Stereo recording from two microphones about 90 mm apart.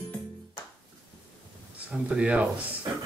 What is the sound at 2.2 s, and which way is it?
Music, 15° right (ahead or behind).